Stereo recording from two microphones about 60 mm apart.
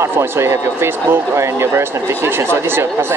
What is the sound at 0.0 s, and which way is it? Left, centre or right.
Speech, right.